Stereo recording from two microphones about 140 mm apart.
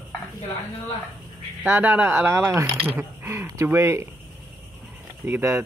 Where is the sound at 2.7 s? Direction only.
45° right (ahead or behind).